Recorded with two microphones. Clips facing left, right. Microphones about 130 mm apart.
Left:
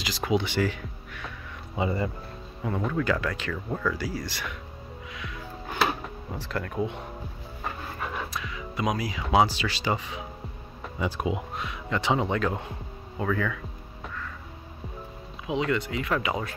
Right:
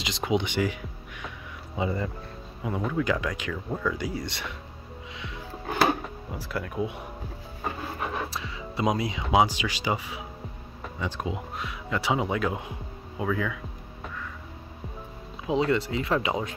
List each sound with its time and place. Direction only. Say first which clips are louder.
0.0 s speech: even; 20° right (ahead or behind)
1.8 s speech: left 1 dB; centre (ahead or behind)
2.6 s speech: even; 10° right (ahead or behind); by 4.6 s 25° right (ahead or behind)
6.0 s speech: even; 10° right (ahead or behind)
8.3 s music: even; 30° right (ahead or behind)
9.3 s speech: even; 15° right (ahead or behind)
10.8 s speech: left 3 dB; 10° left (ahead or behind); by 13.6 s 10° right (ahead or behind)
15.4 s speech: right 3 dB; 30° right (ahead or behind)